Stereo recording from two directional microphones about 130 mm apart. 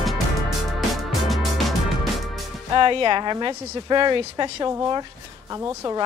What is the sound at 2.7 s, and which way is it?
Speech, 40° right (ahead or behind).